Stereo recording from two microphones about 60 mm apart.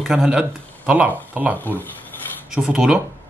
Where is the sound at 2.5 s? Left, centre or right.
Centre.